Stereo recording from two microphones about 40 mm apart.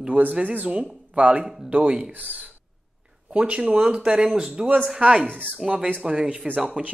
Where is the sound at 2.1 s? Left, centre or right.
Right.